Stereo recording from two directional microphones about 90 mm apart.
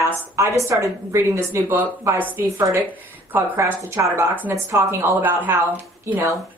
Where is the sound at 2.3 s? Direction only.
35° right (ahead or behind).